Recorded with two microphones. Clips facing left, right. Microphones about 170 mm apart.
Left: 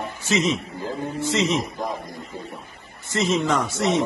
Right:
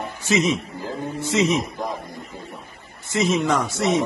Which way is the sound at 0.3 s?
10° right (ahead or behind).